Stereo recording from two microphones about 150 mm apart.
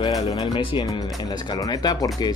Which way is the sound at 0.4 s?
35° left (ahead or behind).